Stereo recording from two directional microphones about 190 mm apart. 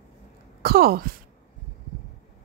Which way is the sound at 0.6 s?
50° right (ahead or behind).